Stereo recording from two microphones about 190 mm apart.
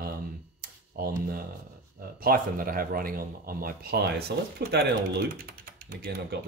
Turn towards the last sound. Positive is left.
turn(degrees=-55)  # may be behind; listen again after turning